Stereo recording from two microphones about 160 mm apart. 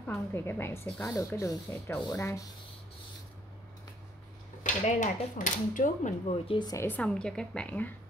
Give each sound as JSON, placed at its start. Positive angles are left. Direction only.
{"t": 0.0, "sound": "a woman's voice", "side_deg": 15}
{"t": 4.6, "sound": "speech", "side_deg": 50}
{"t": 6.4, "sound": "a woman's voice", "side_deg": 30}
{"t": 6.9, "sound": "a woman's voice", "side_deg": 5}